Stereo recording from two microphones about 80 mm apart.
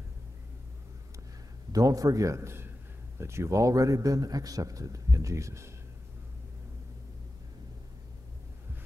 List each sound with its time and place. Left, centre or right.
1.7 s a man's voice: right